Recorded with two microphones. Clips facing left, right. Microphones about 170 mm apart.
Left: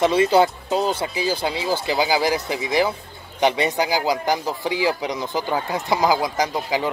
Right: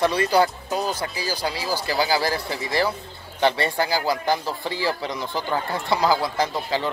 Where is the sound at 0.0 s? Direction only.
25° left (ahead or behind).